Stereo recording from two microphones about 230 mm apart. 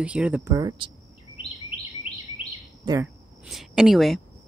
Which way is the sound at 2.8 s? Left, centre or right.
Centre.